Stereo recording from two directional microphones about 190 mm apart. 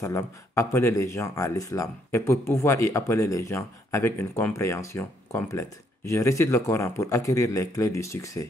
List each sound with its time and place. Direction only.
0.0 s speech: 15° left (ahead or behind)